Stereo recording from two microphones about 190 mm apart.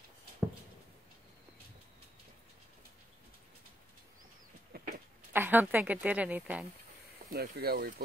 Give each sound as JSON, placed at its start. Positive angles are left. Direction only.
{"t": 4.7, "sound": "a sound", "side_deg": -55}
{"t": 5.3, "sound": "a woman's voice", "side_deg": -10}
{"t": 7.2, "sound": "speech", "side_deg": -55}